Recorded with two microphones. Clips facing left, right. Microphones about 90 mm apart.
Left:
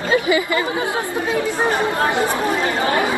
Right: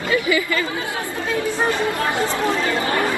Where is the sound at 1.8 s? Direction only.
25° left (ahead or behind).